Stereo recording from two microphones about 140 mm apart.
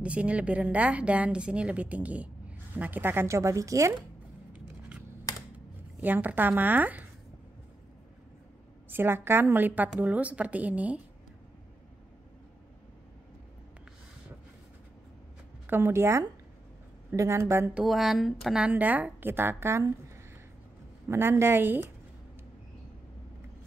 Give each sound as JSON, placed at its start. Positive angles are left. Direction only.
{"t": 0.0, "sound": "a woman's voice", "side_deg": -10}
{"t": 4.5, "sound": "a sound", "side_deg": -10}
{"t": 5.3, "sound": "computer keyboard", "side_deg": 25}
{"t": 5.9, "sound": "a woman's voice", "side_deg": -15}
{"t": 8.8, "sound": "a woman's voice", "side_deg": -15}
{"t": 15.6, "sound": "a woman's voice", "side_deg": -15}
{"t": 17.7, "sound": "a woman's voice", "side_deg": 0}
{"t": 21.1, "sound": "a woman's voice", "side_deg": -15}